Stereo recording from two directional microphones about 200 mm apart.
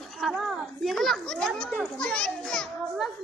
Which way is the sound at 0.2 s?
Centre (ahead or behind).